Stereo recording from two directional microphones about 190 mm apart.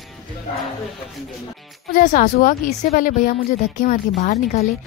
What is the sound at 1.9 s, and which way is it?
A woman's voice, 45° left (ahead or behind).